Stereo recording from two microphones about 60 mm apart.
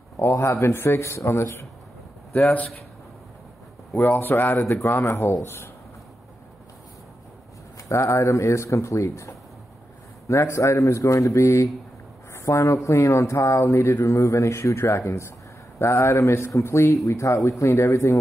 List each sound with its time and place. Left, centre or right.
0.3 s speech: left
2.3 s a man's voice: left
3.9 s speech: left
4.9 s speech: left
7.9 s speech: left